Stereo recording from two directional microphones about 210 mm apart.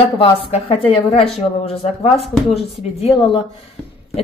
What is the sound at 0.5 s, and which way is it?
Speech, 25° left (ahead or behind).